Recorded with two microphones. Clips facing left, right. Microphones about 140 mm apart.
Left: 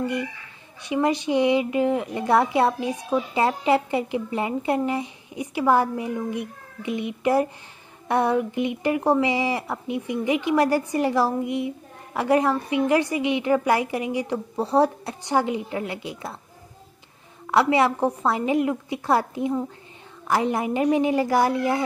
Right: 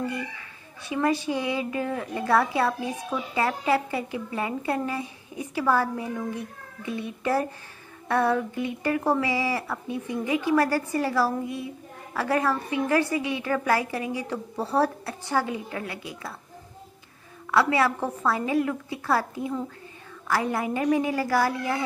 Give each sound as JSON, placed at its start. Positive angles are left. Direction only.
{"t": 0.8, "sound": "a woman's voice", "side_deg": 20}
{"t": 17.5, "sound": "a woman's voice", "side_deg": 20}